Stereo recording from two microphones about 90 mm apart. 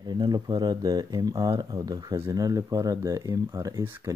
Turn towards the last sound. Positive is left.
turn(degrees=-40)  # may be behind; listen again after turning